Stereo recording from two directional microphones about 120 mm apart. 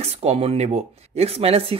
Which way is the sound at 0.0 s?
60° right (ahead or behind).